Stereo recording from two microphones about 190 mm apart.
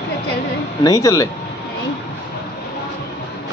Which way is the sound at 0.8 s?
20° left (ahead or behind).